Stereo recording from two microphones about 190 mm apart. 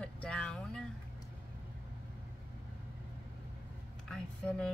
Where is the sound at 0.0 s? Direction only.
5° left (ahead or behind).